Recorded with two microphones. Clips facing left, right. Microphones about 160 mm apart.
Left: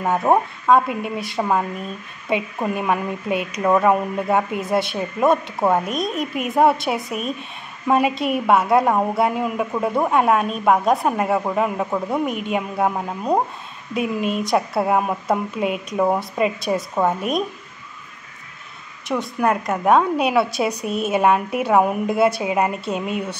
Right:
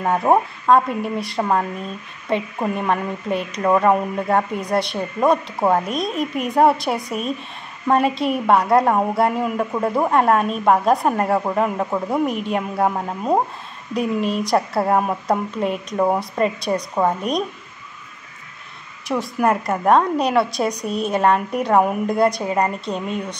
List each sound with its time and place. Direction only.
0.0 s a woman's voice: centre (ahead or behind)
19.0 s a woman's voice: centre (ahead or behind)